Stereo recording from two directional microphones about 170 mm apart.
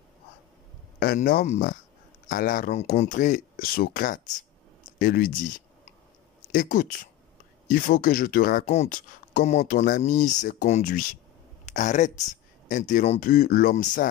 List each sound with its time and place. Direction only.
0.9 s speech: 65° left (ahead or behind)
1.4 s speech: 45° left (ahead or behind)
2.8 s speech: 45° left (ahead or behind); by 5.5 s 60° left (ahead or behind)
6.5 s speech: 50° left (ahead or behind)